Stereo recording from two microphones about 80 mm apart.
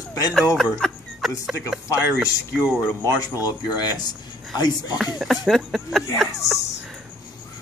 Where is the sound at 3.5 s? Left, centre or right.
Left.